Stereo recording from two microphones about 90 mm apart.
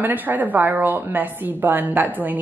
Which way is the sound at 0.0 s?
20° right (ahead or behind).